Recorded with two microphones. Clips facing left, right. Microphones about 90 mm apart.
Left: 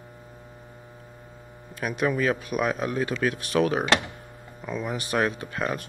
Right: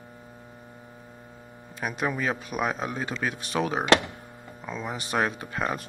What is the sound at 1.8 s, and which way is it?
Speech, 15° right (ahead or behind).